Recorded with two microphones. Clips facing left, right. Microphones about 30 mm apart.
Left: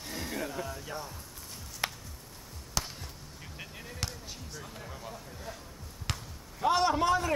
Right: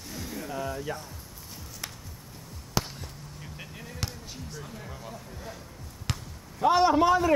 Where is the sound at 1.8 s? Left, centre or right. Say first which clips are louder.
Left 7 dB; left.